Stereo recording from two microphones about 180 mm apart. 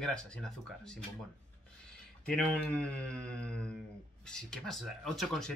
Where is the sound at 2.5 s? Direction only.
5° left (ahead or behind).